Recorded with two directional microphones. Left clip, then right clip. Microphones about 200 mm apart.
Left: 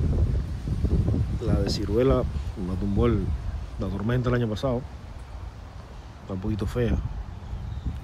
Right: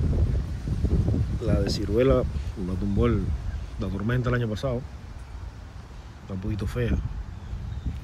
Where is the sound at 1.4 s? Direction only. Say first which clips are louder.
Right 1 dB; 5° left (ahead or behind).